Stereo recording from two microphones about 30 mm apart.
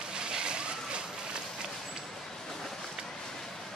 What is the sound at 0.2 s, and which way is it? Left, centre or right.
Slosh, right.